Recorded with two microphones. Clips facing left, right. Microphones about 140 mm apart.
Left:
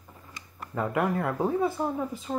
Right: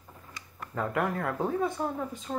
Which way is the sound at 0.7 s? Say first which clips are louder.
Left 3 dB; 5° left (ahead or behind).